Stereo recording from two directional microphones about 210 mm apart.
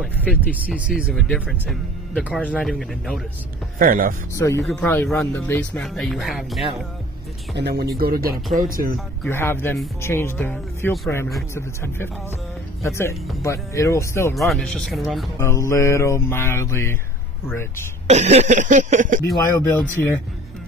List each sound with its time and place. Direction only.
0.6 s speech: 5° right (ahead or behind)
3.7 s speech: 45° right (ahead or behind)
4.4 s mantra: 15° left (ahead or behind)
4.6 s speech: 5° left (ahead or behind)
7.5 s speech: 50° right (ahead or behind)
8.5 s a sound: 40° right (ahead or behind)
9.3 s mantra: 10° left (ahead or behind)
14.3 s speech: centre (ahead or behind)
15.3 s mantra: 15° left (ahead or behind)
18.0 s a sound: 35° right (ahead or behind)
19.2 s mantra: 15° left (ahead or behind)